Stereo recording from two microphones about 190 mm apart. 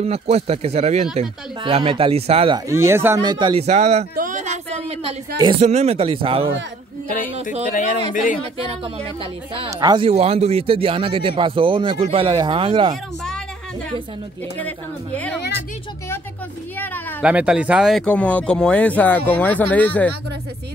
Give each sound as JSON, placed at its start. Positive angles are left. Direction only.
{"t": 0.0, "sound": "a man's voice", "side_deg": -30}
{"t": 2.7, "sound": "speech", "side_deg": -15}
{"t": 3.6, "sound": "a sound", "side_deg": -35}
{"t": 5.6, "sound": "speech", "side_deg": -35}
{"t": 8.1, "sound": "speech", "side_deg": 45}
{"t": 8.6, "sound": "a man's voice", "side_deg": -30}
{"t": 16.7, "sound": "speech", "side_deg": 10}
{"t": 17.2, "sound": "speech", "side_deg": -5}